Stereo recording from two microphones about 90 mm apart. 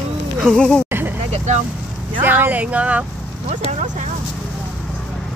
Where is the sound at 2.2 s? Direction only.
20° right (ahead or behind).